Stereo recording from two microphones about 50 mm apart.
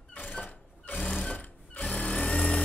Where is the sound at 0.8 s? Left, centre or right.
Left.